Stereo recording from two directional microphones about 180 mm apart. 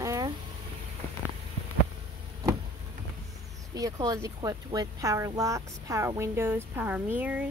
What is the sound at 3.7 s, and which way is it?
Speech, 20° right (ahead or behind).